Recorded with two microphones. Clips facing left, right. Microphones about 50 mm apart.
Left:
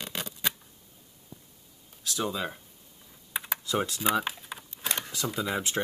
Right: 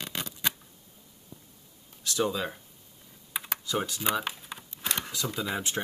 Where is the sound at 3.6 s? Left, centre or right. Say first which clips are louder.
Left 2 dB; left.